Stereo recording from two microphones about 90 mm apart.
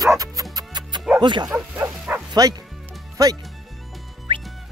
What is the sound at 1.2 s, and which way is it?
Speech, 60° right (ahead or behind).